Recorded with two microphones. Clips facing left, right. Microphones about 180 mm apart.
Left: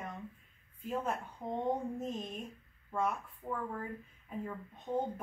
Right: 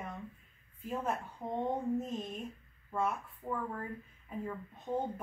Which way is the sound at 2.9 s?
5° right (ahead or behind).